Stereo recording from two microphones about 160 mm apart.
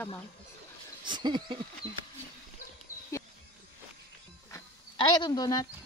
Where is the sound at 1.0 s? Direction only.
30° right (ahead or behind).